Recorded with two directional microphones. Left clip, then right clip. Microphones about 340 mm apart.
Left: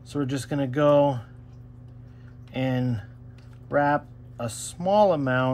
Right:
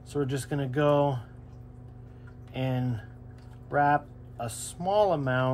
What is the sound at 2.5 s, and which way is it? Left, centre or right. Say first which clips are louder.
Speech: left 5 dB; left.